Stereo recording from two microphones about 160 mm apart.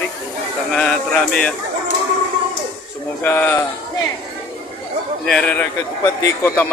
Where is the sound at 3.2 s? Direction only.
15° left (ahead or behind).